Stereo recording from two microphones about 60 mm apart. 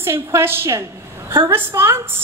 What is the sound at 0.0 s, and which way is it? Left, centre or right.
A woman's voice, right.